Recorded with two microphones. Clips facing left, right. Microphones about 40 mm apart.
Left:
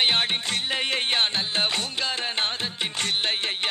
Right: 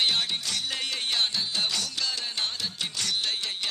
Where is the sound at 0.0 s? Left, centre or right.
Left.